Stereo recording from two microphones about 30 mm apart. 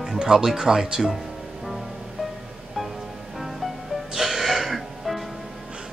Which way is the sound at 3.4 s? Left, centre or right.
Centre.